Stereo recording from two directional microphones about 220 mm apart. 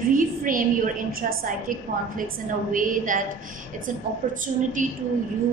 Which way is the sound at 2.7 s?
35° right (ahead or behind).